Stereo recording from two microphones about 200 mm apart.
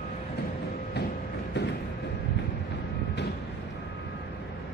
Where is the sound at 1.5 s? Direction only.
60° left (ahead or behind).